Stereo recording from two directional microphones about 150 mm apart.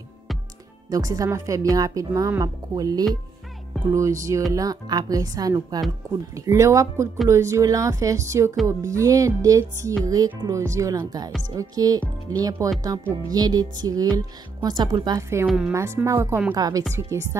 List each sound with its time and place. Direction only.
0.8 s speech: 25° right (ahead or behind)
15.4 s a woman's voice: 5° right (ahead or behind)
15.7 s speech: 20° right (ahead or behind)
16.5 s speech: 25° right (ahead or behind)